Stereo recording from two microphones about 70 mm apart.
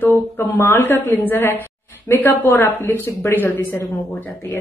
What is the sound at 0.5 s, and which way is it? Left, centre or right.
Speech, left.